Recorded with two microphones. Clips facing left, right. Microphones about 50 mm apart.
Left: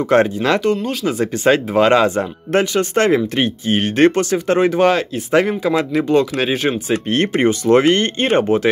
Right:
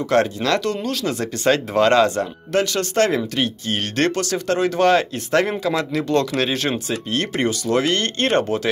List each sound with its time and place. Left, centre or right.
0.0 s speech: left
4.9 s speech: centre
6.9 s speech: left